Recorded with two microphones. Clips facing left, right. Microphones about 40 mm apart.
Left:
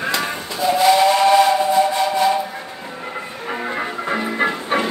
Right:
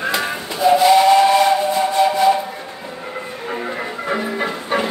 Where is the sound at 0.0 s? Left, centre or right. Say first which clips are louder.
Right 1 dB; centre.